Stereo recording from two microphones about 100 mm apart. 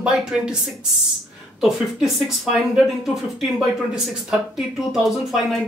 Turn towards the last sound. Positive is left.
turn(degrees=0)  # may be behind; listen again after turning